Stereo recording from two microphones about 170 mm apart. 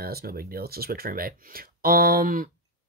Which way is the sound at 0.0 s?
60° right (ahead or behind).